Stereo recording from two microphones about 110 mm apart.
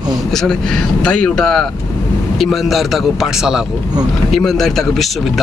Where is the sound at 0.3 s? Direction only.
5° left (ahead or behind).